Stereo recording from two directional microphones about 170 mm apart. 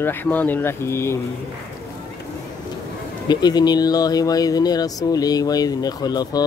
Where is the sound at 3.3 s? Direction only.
25° left (ahead or behind).